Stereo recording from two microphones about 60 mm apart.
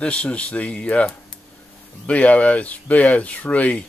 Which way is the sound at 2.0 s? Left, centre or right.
Left.